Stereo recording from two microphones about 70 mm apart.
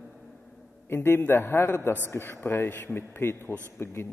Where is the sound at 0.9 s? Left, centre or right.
Left.